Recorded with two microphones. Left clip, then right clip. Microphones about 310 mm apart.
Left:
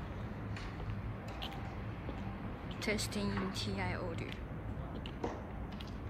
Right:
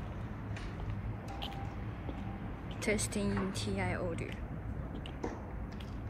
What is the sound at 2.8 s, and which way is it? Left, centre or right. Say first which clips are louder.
Speech: right 3 dB; centre.